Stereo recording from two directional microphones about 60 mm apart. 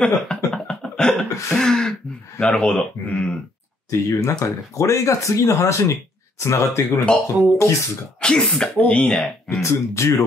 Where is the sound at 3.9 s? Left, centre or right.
Left.